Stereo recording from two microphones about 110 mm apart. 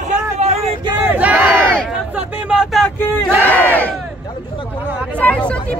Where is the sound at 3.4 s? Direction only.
15° left (ahead or behind).